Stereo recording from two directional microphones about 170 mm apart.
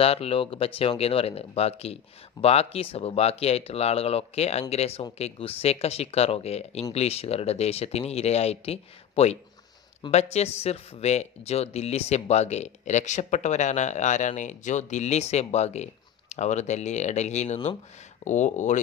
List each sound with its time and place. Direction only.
0.0 s speech: 35° left (ahead or behind)